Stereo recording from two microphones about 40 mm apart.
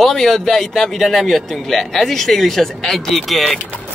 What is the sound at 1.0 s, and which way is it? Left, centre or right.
Speech, centre.